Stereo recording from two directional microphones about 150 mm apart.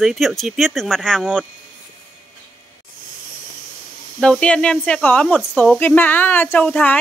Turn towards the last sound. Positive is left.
turn(degrees=10)  # may be behind; listen again after turning